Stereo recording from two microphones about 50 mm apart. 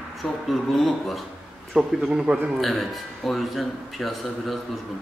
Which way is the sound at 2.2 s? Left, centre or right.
Right.